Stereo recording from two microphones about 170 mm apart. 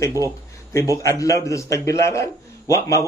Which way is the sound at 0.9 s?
20° left (ahead or behind).